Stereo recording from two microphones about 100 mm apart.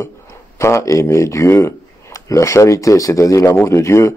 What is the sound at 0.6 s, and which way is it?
Speech, 30° left (ahead or behind).